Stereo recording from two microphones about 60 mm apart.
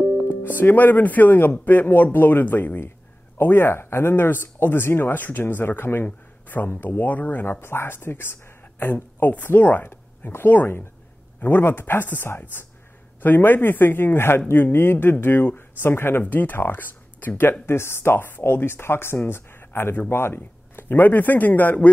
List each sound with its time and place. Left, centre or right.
0.4 s speech: left
7.6 s speech: left
17.6 s speech: left